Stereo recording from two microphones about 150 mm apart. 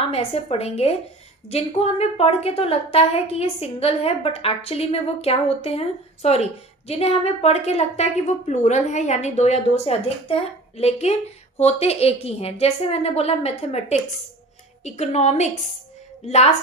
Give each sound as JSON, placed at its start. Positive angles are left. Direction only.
{"t": 0.1, "sound": "a woman's voice", "side_deg": 45}